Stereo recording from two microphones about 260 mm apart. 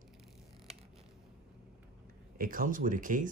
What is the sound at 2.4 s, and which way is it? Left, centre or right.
Speech, right.